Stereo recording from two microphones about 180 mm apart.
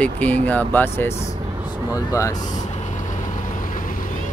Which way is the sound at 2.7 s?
40° left (ahead or behind).